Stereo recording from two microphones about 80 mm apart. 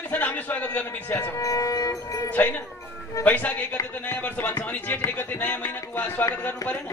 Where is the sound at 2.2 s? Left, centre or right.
Left.